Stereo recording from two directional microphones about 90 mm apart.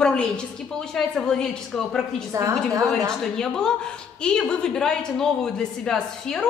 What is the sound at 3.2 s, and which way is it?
A man's voice, 5° left (ahead or behind).